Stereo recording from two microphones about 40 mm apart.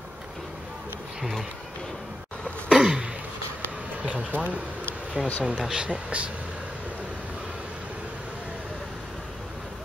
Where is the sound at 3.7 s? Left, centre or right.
Right.